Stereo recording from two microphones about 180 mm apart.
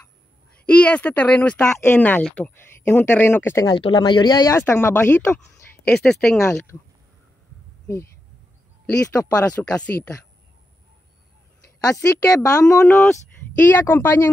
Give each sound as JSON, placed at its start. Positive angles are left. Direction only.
{"t": 0.7, "sound": "speech", "side_deg": 5}
{"t": 9.1, "sound": "speech", "side_deg": 15}
{"t": 11.8, "sound": "speech", "side_deg": 15}